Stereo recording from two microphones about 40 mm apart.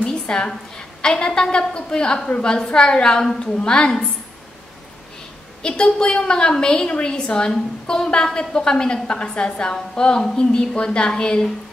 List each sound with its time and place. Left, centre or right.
0.0 s a sound: left
0.5 s a woman's voice: centre
5.6 s a woman's voice: left